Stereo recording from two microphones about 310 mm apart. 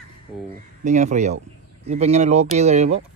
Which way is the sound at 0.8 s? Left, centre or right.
Right.